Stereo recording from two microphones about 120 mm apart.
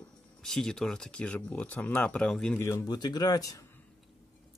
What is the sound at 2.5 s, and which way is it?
Speech, 25° left (ahead or behind).